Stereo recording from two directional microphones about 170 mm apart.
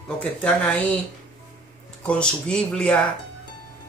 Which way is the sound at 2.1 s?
5° left (ahead or behind).